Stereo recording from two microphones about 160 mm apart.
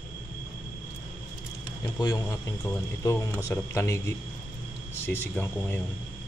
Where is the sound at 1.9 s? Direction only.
25° left (ahead or behind).